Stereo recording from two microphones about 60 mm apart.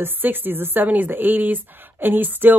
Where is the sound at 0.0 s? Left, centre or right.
Right.